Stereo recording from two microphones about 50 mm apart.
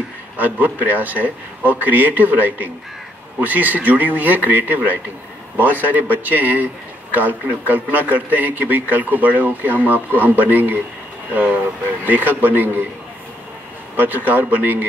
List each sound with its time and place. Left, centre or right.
0.4 s speech: right
12.0 s speech: right
13.9 s speech: right